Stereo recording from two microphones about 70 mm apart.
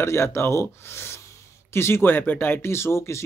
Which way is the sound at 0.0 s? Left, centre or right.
Left.